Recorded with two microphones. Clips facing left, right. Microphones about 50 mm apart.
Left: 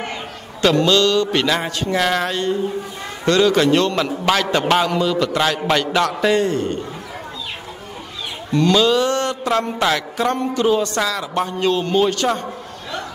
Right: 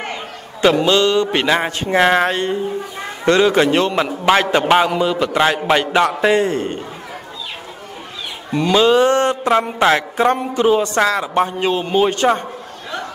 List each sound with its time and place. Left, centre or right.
0.6 s speech: centre
8.5 s speech: centre
10.3 s speech: centre
11.0 s speech: right